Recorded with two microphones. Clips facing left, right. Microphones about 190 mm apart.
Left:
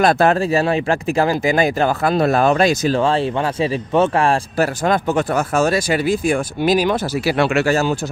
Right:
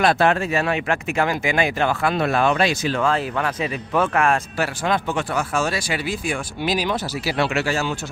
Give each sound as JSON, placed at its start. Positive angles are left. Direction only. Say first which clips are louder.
{"t": 0.0, "sound": "speech", "louder": "left 4 dB", "side_deg": 40}
{"t": 4.8, "sound": "speech", "louder": "left 4 dB", "side_deg": 40}